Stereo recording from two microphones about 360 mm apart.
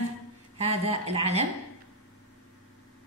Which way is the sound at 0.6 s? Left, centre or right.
Centre.